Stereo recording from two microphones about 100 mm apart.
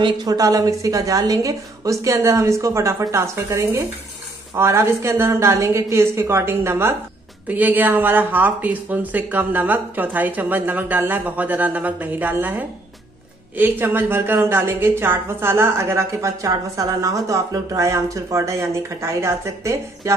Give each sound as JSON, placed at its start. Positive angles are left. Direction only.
{"t": 0.0, "sound": "a woman's voice", "side_deg": -40}